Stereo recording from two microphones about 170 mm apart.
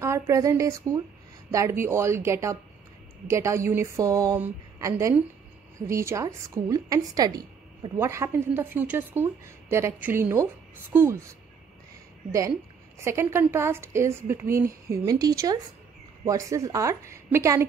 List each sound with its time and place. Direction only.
0.0 s a woman's voice: 20° right (ahead or behind)